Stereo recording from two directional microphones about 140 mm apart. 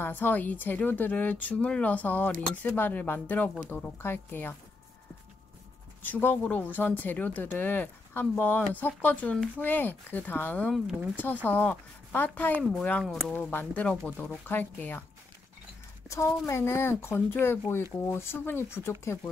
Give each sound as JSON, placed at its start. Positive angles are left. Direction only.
{"t": 0.0, "sound": "speech", "side_deg": 15}
{"t": 6.0, "sound": "speech", "side_deg": 10}
{"t": 16.4, "sound": "speech", "side_deg": 20}